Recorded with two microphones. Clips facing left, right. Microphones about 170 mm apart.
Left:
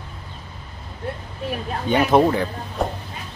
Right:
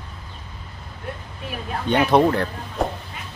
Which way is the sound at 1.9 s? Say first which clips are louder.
Even; 5° left (ahead or behind).